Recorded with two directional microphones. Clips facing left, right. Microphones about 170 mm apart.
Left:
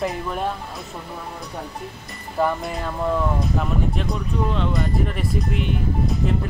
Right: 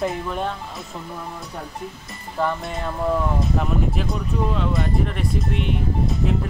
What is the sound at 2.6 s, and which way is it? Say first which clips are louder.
Speech: even; centre (ahead or behind).